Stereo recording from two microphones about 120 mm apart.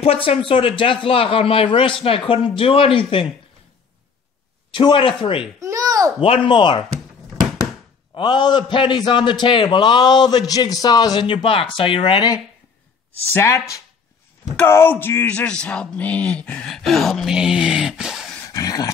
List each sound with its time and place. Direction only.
0.0 s speech: 55° left (ahead or behind)
4.7 s speech: 45° left (ahead or behind)
5.6 s a sound: 25° right (ahead or behind)
6.1 s speech: 50° left (ahead or behind)
8.1 s a man's voice: 35° left (ahead or behind)
13.3 s speech: 25° left (ahead or behind); by 18.3 s 5° right (ahead or behind)
18.5 s dog: 30° left (ahead or behind)